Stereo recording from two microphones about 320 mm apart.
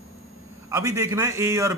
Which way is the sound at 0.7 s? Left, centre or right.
Centre.